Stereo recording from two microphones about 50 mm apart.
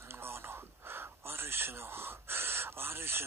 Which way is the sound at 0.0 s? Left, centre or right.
Right.